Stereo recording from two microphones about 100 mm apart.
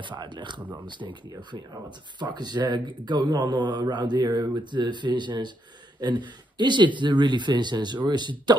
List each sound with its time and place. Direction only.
0.0 s a man's voice: 50° right (ahead or behind)
2.1 s a man's voice: 45° right (ahead or behind)